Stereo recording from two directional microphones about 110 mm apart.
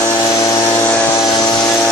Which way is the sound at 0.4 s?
30° left (ahead or behind).